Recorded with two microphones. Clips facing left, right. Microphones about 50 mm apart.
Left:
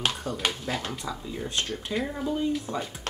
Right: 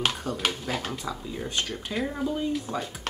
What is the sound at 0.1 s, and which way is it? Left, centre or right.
Speech, centre.